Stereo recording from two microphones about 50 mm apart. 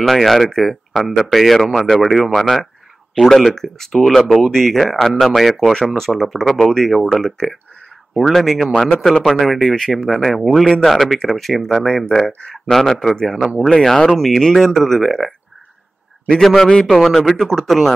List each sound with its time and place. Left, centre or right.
0.0 s speech: centre
8.7 s a man's voice: left
9.2 s speech: centre
10.0 s speech: centre
12.3 s a man's voice: left
12.7 s speech: centre